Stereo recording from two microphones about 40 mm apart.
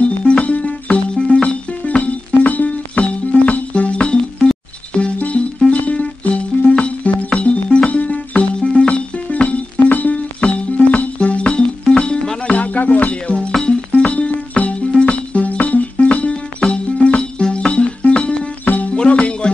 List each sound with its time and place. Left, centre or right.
0.0 s music: left
2.3 s music: left
9.8 s music: left
10.1 s music: left
13.1 s music: left
14.9 s music: left
15.3 s music: left
17.2 s music: left
18.7 s music: left
18.9 s music: left